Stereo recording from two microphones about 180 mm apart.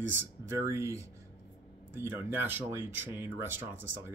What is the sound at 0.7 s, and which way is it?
Speech, 15° right (ahead or behind).